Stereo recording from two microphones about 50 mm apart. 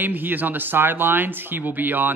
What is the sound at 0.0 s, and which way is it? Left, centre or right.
Speech, right.